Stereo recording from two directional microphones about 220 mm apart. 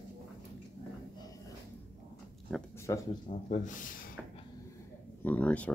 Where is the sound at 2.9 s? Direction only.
15° left (ahead or behind).